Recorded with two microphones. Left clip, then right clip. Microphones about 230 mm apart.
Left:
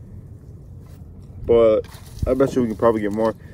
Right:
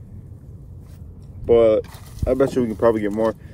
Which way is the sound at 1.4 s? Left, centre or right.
Centre.